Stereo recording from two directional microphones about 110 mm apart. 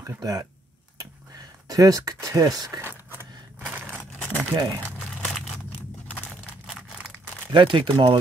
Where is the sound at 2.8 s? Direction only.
20° right (ahead or behind).